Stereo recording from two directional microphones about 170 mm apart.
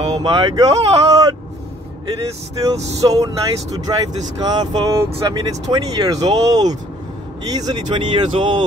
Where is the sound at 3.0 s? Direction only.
25° right (ahead or behind).